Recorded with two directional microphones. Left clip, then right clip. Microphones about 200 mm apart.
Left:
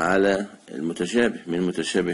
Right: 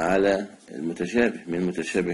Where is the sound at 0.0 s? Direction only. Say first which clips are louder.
Left 1 dB; 35° left (ahead or behind).